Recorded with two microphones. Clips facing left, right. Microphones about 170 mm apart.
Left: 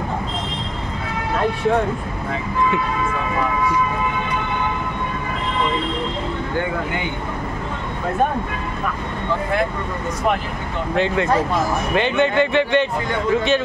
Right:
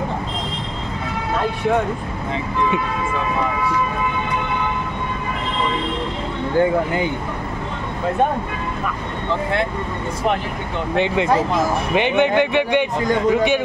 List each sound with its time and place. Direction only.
11.0 s speech: 15° right (ahead or behind)